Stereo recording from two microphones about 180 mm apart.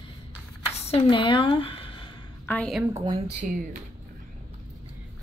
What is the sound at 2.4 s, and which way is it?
Speech, 5° left (ahead or behind).